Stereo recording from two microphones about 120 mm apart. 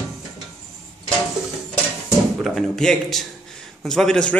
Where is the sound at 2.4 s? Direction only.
5° left (ahead or behind).